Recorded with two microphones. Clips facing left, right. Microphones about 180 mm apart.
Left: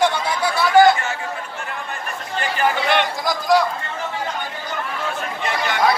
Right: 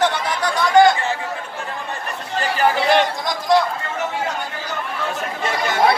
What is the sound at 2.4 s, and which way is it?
Chatter, 40° right (ahead or behind).